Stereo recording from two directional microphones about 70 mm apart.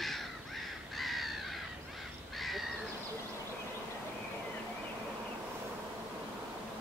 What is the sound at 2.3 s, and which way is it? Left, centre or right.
Crow, centre.